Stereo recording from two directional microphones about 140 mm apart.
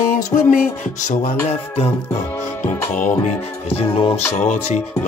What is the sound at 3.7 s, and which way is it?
Music, 45° left (ahead or behind).